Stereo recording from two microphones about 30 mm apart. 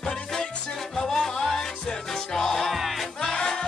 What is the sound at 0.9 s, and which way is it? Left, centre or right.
Music, centre.